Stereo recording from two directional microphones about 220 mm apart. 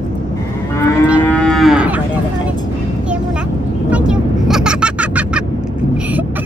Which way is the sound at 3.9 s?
5° right (ahead or behind).